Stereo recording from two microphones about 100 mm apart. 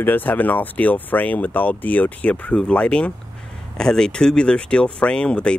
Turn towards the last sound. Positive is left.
turn(degrees=10)  # may be behind; listen again after turning